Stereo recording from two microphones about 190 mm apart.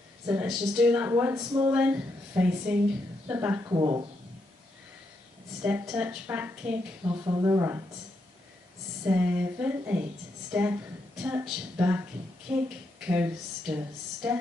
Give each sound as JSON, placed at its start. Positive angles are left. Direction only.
{"t": 0.3, "sound": "speech", "side_deg": -5}
{"t": 1.7, "sound": "speech", "side_deg": -5}
{"t": 3.7, "sound": "speech", "side_deg": -20}
{"t": 5.6, "sound": "speech", "side_deg": -5}
{"t": 7.1, "sound": "speech", "side_deg": -20}
{"t": 9.0, "sound": "a woman's voice", "side_deg": -10}